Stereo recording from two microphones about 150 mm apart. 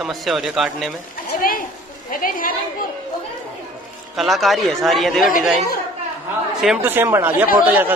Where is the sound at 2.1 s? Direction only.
70° left (ahead or behind).